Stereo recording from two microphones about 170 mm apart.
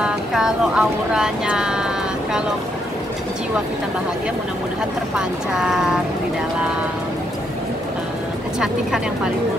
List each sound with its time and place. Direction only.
0.0 s speech: 5° right (ahead or behind)
5.1 s speech: 5° right (ahead or behind)